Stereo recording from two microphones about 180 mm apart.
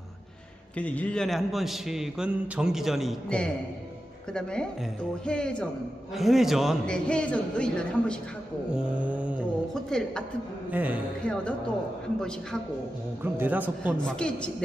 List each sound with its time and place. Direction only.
0.7 s a man's voice: 5° left (ahead or behind)
8.7 s a man's voice: 5° right (ahead or behind)
9.8 s a man's voice: 5° left (ahead or behind)
10.7 s a man's voice: 10° right (ahead or behind)
11.2 s a man's voice: 5° left (ahead or behind)
13.2 s a man's voice: 10° right (ahead or behind)
14.0 s a man's voice: 5° left (ahead or behind)